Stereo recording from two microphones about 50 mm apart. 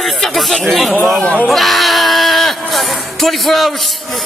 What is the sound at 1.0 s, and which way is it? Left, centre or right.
Speech, left.